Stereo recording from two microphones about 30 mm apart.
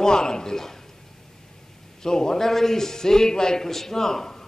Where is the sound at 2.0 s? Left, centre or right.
Left.